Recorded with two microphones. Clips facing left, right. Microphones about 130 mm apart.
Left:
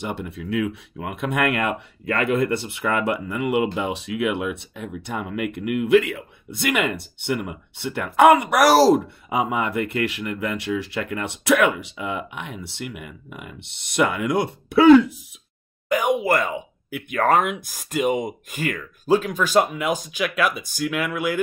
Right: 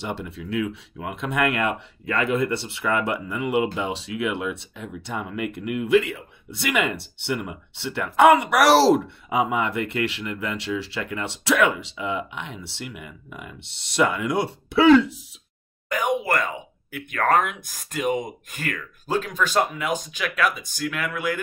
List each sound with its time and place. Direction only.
0.2 s speech: 50° left (ahead or behind)
15.9 s a sound: 10° left (ahead or behind)
16.9 s speech: 10° left (ahead or behind)